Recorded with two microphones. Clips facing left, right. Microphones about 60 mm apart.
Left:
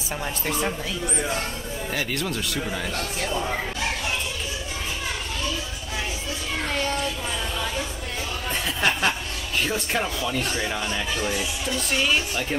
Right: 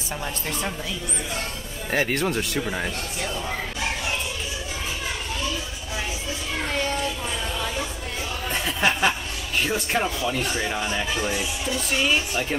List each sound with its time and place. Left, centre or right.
0.5 s speech: centre
1.9 s speech: right
8.5 s speech: centre